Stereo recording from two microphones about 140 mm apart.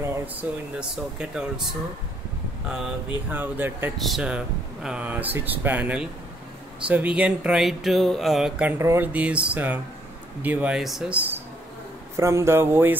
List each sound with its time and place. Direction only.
0.0 s air conditioning: 20° right (ahead or behind)
0.7 s speech: 5° right (ahead or behind)
2.7 s speech: 10° right (ahead or behind)
4.0 s speech: 5° right (ahead or behind)
8.7 s a man's voice: 20° right (ahead or behind)